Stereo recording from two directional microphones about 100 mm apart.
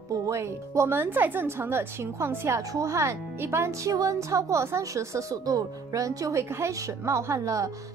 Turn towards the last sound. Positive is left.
turn(degrees=-35)  # may be behind; listen again after turning